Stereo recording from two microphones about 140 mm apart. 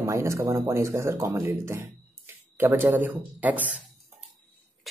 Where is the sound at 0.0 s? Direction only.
20° right (ahead or behind).